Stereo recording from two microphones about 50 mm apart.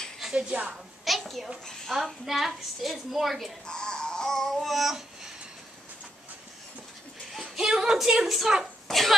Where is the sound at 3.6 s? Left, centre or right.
Centre.